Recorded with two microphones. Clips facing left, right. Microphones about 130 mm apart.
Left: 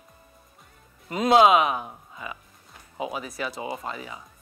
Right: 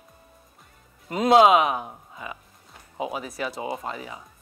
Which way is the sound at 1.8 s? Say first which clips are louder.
Right 1 dB; 25° right (ahead or behind).